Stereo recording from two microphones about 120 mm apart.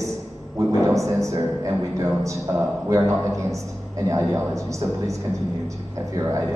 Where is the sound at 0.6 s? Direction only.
25° right (ahead or behind).